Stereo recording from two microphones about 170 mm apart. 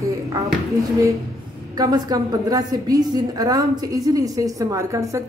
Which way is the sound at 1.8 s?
20° right (ahead or behind).